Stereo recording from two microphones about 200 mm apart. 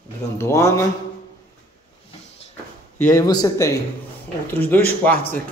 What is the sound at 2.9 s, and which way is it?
Speech, 15° left (ahead or behind).